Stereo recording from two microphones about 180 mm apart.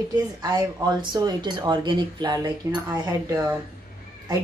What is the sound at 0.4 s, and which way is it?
Speech, 20° right (ahead or behind).